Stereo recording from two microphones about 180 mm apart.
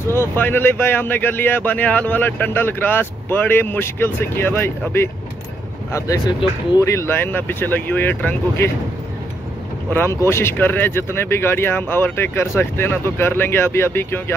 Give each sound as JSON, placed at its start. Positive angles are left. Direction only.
{"t": 0.0, "sound": "speech", "side_deg": 15}
{"t": 9.9, "sound": "speech", "side_deg": 15}